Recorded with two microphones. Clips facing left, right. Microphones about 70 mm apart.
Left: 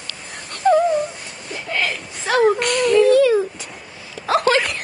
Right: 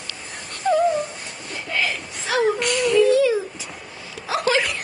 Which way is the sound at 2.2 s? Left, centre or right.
Left.